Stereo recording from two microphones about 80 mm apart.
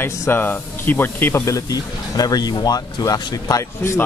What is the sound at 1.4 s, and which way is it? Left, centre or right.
Speech, left.